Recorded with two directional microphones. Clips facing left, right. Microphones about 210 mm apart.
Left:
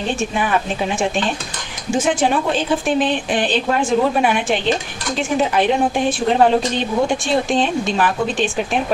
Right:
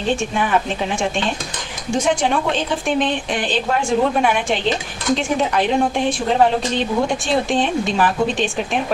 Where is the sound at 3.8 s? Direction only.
5° left (ahead or behind).